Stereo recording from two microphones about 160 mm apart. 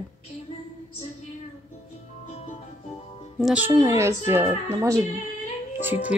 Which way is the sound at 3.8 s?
15° right (ahead or behind).